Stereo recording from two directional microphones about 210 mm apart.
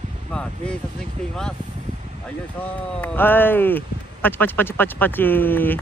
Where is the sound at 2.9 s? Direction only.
10° left (ahead or behind).